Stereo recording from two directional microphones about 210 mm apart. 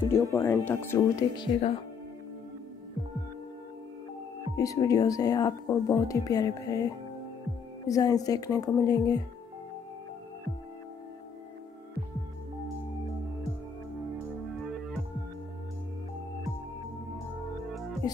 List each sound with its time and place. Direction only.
0.1 s speech: 15° left (ahead or behind)
4.6 s speech: 15° left (ahead or behind)
7.8 s speech: 15° left (ahead or behind)